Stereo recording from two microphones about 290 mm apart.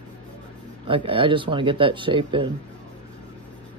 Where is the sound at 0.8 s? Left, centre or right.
Centre.